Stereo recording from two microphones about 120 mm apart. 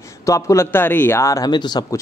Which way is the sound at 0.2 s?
25° left (ahead or behind).